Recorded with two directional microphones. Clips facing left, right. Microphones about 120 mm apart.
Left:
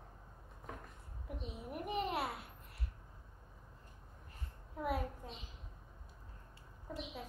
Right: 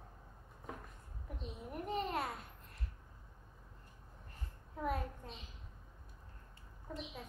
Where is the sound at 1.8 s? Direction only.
5° left (ahead or behind).